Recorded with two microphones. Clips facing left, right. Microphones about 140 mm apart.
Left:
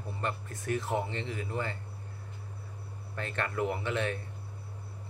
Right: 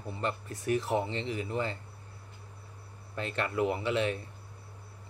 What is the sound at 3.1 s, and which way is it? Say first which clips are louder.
Speech: right 2 dB; 20° right (ahead or behind).